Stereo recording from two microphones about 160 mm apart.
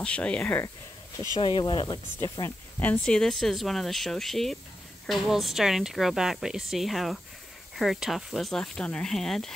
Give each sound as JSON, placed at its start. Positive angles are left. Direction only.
{"t": 0.0, "sound": "speech", "side_deg": 5}
{"t": 1.4, "sound": "speech", "side_deg": 30}
{"t": 2.8, "sound": "speech", "side_deg": 10}